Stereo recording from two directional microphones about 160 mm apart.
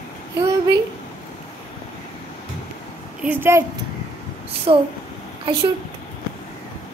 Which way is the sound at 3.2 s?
10° right (ahead or behind).